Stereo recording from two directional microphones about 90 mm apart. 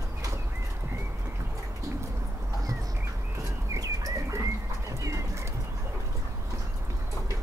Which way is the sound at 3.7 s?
40° right (ahead or behind).